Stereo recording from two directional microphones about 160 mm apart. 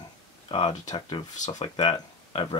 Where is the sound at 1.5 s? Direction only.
30° left (ahead or behind).